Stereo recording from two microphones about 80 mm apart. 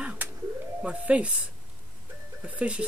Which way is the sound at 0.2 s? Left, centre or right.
Right.